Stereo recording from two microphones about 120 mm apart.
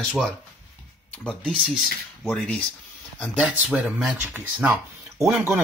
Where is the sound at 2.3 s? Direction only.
10° left (ahead or behind).